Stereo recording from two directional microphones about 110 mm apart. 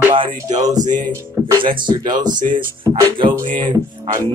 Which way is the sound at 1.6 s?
45° right (ahead or behind).